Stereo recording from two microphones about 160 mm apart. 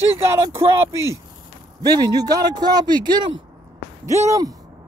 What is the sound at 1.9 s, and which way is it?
A man's voice, 25° right (ahead or behind).